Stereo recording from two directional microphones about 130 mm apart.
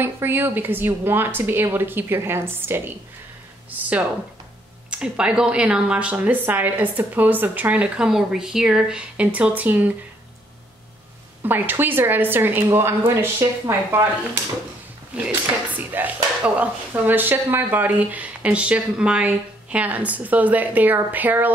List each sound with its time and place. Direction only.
0.0 s speech: 15° right (ahead or behind)
4.9 s speech: 5° right (ahead or behind)
11.4 s speech: 15° right (ahead or behind)